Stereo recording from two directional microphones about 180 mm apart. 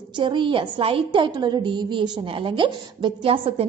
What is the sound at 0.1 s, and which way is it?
A woman's voice, 25° right (ahead or behind).